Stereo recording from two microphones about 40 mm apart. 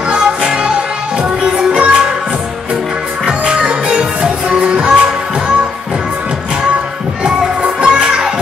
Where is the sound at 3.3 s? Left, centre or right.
Right.